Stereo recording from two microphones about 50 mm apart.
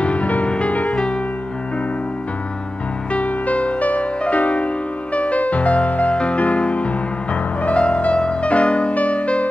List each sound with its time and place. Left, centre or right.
0.0 s music: left
0.8 s music: centre
3.1 s music: left